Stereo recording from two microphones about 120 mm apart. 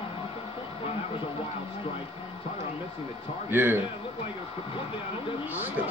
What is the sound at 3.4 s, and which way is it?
Speech, 15° right (ahead or behind).